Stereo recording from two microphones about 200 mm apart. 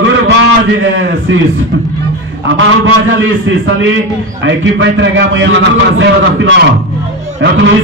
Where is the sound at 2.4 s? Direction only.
75° right (ahead or behind).